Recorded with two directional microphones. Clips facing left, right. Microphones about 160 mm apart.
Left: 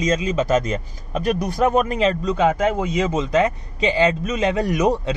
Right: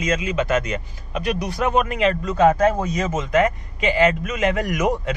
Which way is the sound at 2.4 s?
20° left (ahead or behind).